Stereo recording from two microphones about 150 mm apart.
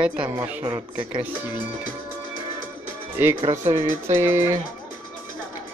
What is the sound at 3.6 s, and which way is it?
Speech, 55° right (ahead or behind).